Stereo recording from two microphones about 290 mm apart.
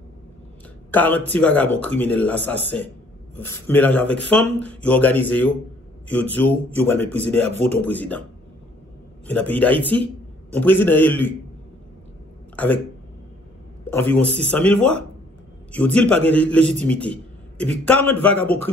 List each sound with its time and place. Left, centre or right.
0.9 s speech: centre
9.3 s a man's voice: centre
12.5 s speech: centre
13.8 s speech: centre